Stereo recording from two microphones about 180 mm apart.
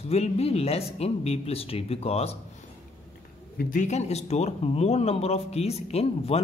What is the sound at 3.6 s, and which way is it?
Speech, 45° left (ahead or behind).